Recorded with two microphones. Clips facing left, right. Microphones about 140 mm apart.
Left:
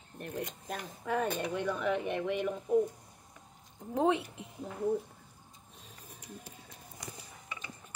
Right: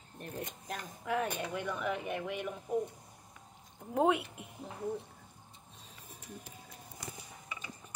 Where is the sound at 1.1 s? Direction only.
10° right (ahead or behind).